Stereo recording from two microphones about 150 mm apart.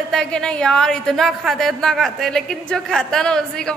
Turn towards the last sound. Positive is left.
turn(degrees=5)  # may be behind; listen again after turning